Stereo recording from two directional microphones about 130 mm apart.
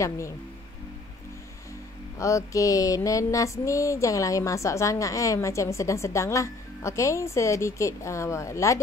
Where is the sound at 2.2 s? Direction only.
25° left (ahead or behind).